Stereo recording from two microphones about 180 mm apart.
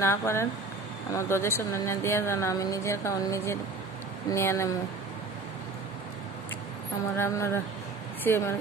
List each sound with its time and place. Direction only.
0.0 s speech: 15° left (ahead or behind)
7.2 s speech: 15° left (ahead or behind)